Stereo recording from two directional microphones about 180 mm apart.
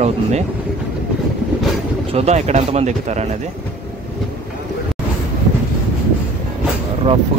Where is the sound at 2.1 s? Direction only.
35° right (ahead or behind).